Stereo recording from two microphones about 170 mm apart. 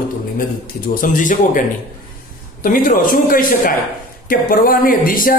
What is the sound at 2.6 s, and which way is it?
A man's voice, 55° left (ahead or behind).